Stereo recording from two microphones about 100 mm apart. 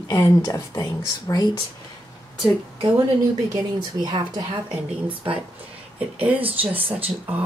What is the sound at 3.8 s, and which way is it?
Speech, 55° right (ahead or behind).